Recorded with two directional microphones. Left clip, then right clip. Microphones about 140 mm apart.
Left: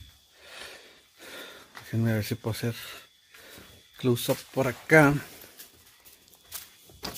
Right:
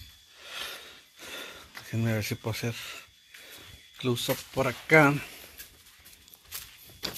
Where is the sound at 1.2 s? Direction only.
15° left (ahead or behind).